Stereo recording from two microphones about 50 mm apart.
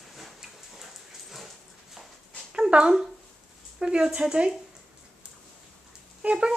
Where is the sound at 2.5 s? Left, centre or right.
Centre.